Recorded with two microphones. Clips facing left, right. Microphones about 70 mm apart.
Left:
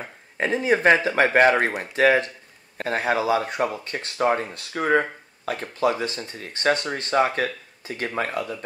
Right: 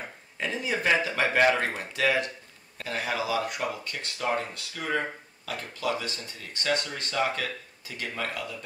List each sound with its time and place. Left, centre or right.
0.4 s speech: left